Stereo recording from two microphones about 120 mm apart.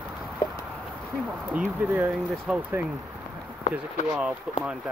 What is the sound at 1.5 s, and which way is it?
Speech, 15° right (ahead or behind).